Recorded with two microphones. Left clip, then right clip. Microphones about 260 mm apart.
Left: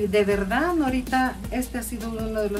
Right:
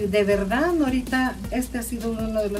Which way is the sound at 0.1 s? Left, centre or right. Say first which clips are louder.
Right 2 dB; centre.